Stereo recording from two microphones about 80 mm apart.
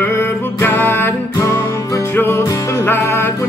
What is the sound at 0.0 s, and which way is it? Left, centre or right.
Music, left.